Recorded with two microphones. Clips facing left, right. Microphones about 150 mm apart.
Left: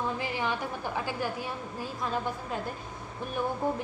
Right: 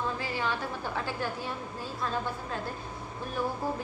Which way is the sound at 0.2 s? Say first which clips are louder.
Left 1 dB; 15° left (ahead or behind).